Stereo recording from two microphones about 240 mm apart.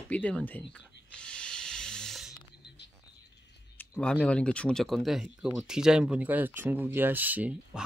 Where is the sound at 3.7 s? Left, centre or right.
Centre.